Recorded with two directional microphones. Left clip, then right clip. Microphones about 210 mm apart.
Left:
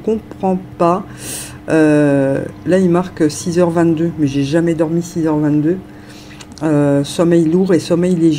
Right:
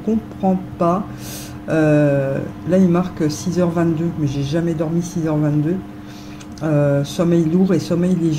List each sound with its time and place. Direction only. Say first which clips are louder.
0.4 s a woman's voice: left 3 dB; 50° left (ahead or behind)
6.6 s speech: left 4 dB; 45° left (ahead or behind)